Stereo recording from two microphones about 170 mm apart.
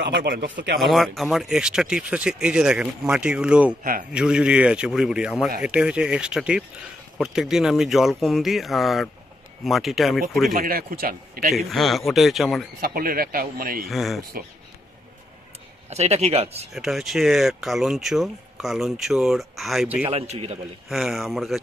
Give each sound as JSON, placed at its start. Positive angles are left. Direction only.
{"t": 0.0, "sound": "speech", "side_deg": -85}
{"t": 0.7, "sound": "speech", "side_deg": 0}
{"t": 3.8, "sound": "speech", "side_deg": -55}
{"t": 4.1, "sound": "speech", "side_deg": -5}
{"t": 10.5, "sound": "speech", "side_deg": -55}
{"t": 11.5, "sound": "speech", "side_deg": 0}
{"t": 12.8, "sound": "speech", "side_deg": -60}
{"t": 13.8, "sound": "speech", "side_deg": 0}
{"t": 15.9, "sound": "a man's voice", "side_deg": -40}
{"t": 16.7, "sound": "speech", "side_deg": 0}
{"t": 20.1, "sound": "a man's voice", "side_deg": -35}
{"t": 20.9, "sound": "speech", "side_deg": 0}